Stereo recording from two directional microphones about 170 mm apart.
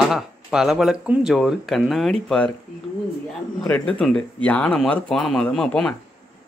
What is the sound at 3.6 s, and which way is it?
Speech, 15° left (ahead or behind).